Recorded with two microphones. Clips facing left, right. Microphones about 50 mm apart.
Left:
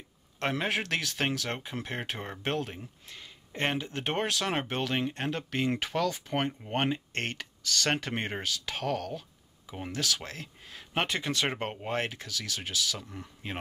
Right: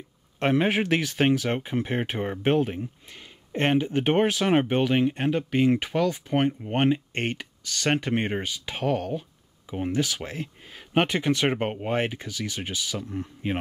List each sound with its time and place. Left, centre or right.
0.4 s speech: centre